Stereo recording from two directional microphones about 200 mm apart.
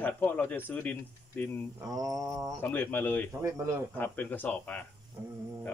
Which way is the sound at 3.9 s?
10° left (ahead or behind).